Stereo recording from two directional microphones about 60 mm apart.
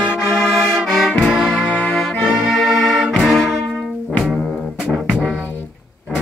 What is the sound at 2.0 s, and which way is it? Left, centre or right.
Brass instrument, centre.